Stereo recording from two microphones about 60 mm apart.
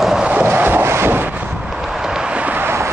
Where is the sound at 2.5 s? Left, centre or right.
Right.